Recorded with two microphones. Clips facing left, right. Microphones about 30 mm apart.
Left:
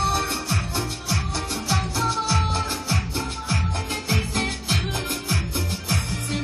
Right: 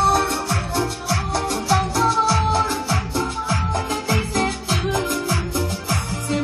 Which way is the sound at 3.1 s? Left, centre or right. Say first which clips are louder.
Right 5 dB; left.